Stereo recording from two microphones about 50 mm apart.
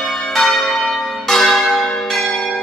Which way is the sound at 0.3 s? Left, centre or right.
Centre.